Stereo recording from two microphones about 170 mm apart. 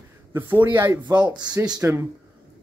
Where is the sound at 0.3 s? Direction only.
10° right (ahead or behind).